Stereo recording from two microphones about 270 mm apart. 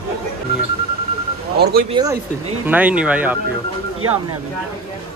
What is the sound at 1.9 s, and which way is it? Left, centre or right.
Speech, centre.